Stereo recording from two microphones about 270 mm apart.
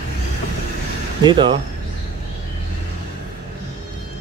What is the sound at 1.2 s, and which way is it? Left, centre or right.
Speech, centre.